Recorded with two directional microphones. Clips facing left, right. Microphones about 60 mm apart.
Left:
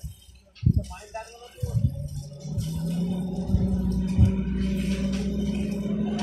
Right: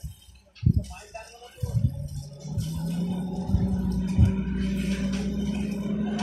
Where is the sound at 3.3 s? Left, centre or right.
Right.